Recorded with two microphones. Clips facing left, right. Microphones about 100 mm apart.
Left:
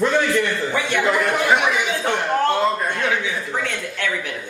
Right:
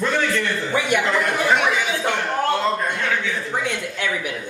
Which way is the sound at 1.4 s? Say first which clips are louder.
Left 1 dB; 15° left (ahead or behind).